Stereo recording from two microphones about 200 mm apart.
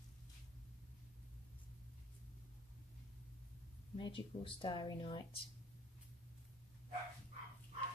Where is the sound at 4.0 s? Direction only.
25° left (ahead or behind).